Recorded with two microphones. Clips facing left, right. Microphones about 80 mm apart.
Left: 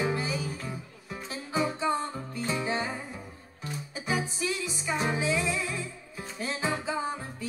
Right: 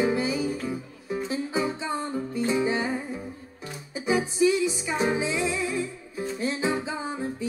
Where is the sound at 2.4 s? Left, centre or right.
Centre.